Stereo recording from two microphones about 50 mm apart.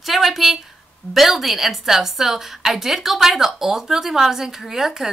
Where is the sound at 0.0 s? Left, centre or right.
Centre.